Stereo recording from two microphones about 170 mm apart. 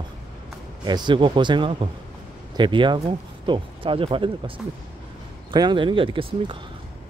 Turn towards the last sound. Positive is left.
turn(degrees=-30)  # may be behind; listen again after turning